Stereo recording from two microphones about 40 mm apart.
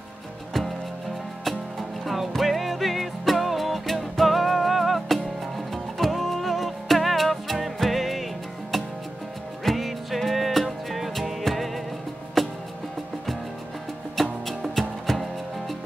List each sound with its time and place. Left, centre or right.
0.5 s music: centre
9.7 s music: centre
14.1 s music: centre